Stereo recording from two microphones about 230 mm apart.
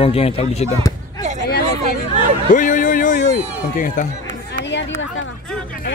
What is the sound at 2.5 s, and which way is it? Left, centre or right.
A man's voice, left.